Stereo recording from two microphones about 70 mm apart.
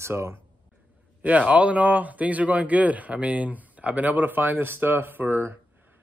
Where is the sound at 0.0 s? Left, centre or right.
Right.